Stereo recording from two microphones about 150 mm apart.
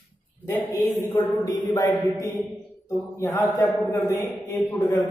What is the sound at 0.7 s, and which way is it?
A man's voice, 20° left (ahead or behind).